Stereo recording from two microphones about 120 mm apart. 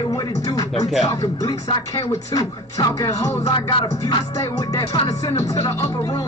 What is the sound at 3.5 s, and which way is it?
Music, 45° left (ahead or behind).